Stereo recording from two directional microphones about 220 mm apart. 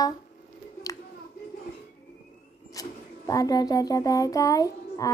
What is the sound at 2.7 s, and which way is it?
Speech, 15° left (ahead or behind).